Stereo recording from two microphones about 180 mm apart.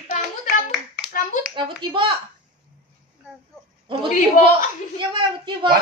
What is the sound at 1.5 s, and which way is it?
Clapping, 25° right (ahead or behind).